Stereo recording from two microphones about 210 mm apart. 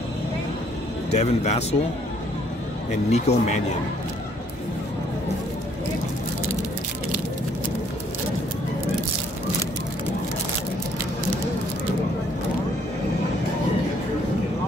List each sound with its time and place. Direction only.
1.1 s speech: 30° left (ahead or behind)
3.1 s speech: 30° left (ahead or behind)